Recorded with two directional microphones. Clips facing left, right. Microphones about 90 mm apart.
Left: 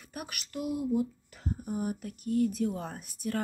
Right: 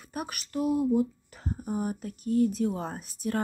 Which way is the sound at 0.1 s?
30° right (ahead or behind).